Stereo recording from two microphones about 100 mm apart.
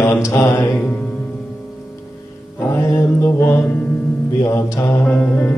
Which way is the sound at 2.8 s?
30° left (ahead or behind).